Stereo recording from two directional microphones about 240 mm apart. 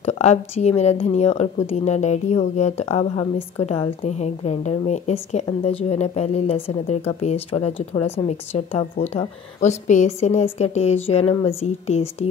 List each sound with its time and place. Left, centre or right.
0.0 s a woman's voice: left